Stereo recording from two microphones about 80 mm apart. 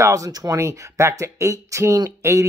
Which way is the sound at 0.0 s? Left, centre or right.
Right.